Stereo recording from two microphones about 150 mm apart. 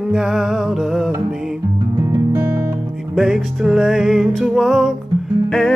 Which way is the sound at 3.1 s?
5° right (ahead or behind).